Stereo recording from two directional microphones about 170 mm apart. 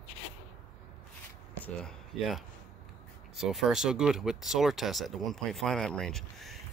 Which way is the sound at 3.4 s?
Centre (ahead or behind).